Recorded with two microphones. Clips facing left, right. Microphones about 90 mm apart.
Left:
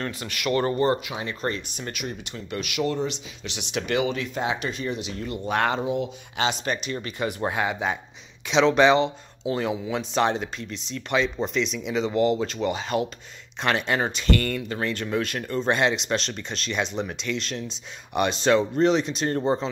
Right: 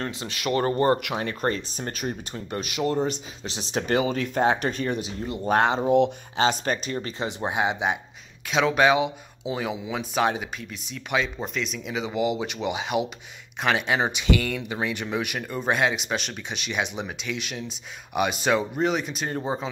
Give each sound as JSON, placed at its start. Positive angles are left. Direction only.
{"t": 0.0, "sound": "speech", "side_deg": -30}
{"t": 5.6, "sound": "speech", "side_deg": -25}
{"t": 5.9, "sound": "speech", "side_deg": -60}
{"t": 6.3, "sound": "speech", "side_deg": -40}
{"t": 8.5, "sound": "speech", "side_deg": -5}